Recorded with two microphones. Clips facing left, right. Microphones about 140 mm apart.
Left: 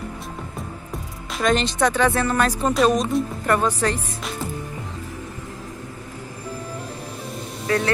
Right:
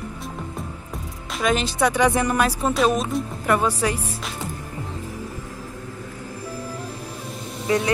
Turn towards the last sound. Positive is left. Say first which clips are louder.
# right 1 dB
turn(degrees=-20)  # may be behind; listen again after turning